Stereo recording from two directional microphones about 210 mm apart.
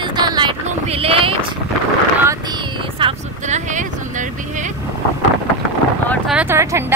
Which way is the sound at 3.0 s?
30° right (ahead or behind).